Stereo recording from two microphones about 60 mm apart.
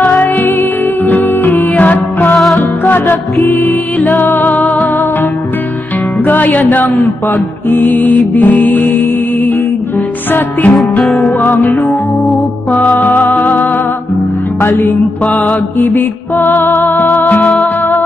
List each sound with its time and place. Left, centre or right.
0.0 s music: left
6.2 s music: left
10.3 s music: left
14.6 s music: left
15.2 s music: left